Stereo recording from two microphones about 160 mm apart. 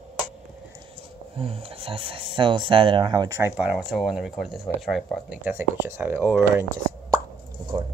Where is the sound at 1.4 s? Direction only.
35° right (ahead or behind); by 3.5 s 20° right (ahead or behind).